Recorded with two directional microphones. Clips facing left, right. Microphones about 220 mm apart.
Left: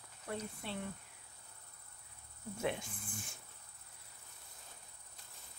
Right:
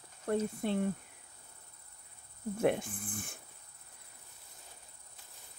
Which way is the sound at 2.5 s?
55° right (ahead or behind).